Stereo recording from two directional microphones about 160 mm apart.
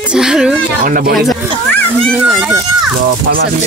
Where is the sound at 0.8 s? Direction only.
65° right (ahead or behind).